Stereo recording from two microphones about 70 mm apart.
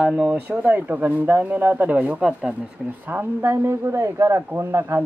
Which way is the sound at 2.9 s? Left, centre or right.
Right.